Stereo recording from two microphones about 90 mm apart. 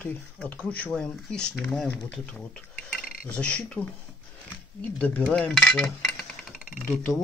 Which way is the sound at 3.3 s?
15° left (ahead or behind).